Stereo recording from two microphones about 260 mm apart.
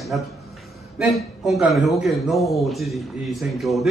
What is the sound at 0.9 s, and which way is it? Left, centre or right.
Speech, centre.